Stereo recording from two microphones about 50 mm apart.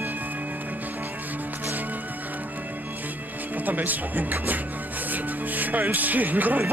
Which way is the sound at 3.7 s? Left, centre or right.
Right.